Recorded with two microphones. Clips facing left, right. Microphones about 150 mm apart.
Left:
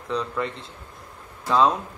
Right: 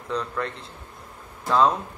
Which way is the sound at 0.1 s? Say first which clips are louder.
Left 1 dB; centre (ahead or behind).